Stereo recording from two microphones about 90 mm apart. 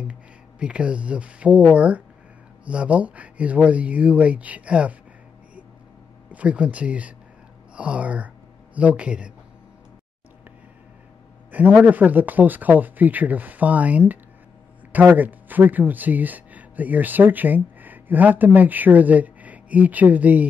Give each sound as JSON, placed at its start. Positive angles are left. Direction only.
{"t": 0.1, "sound": "speech", "side_deg": -10}
{"t": 6.3, "sound": "speech", "side_deg": -15}
{"t": 11.5, "sound": "speech", "side_deg": -20}